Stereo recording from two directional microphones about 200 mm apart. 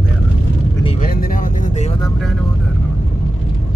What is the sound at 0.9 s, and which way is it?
Speech, 45° left (ahead or behind).